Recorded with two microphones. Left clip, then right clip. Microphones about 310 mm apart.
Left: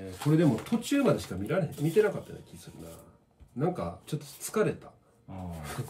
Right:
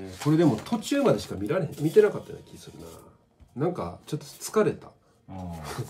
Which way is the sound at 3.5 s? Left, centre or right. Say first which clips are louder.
Right 3 dB; centre.